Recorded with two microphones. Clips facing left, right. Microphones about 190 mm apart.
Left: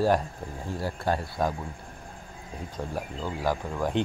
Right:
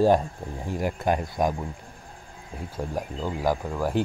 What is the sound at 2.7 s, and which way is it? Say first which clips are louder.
Speech: right 3 dB; 15° right (ahead or behind).